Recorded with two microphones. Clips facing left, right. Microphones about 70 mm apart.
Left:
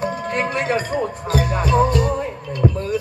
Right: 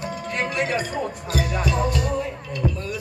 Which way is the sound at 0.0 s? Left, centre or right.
Left.